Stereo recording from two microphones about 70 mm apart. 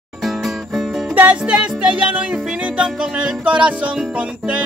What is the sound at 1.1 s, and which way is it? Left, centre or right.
Music, right.